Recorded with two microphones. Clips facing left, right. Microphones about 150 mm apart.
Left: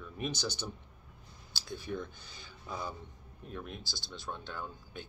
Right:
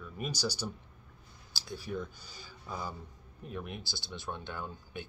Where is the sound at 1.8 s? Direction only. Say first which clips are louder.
Right 1 dB; 10° right (ahead or behind).